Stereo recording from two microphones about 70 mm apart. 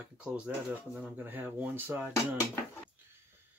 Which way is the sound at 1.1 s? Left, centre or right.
Right.